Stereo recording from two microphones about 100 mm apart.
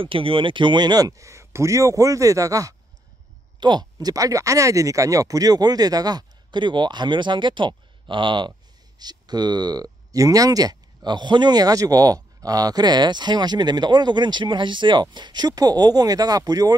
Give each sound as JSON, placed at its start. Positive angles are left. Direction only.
{"t": 0.0, "sound": "speech", "side_deg": -65}
{"t": 3.5, "sound": "speech", "side_deg": -50}
{"t": 9.0, "sound": "speech", "side_deg": -45}